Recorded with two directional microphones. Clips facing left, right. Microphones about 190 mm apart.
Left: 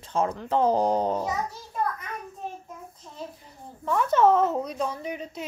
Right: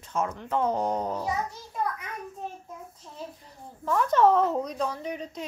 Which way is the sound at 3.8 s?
Centre (ahead or behind).